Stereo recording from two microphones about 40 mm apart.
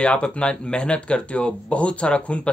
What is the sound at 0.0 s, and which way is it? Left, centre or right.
Speech, left.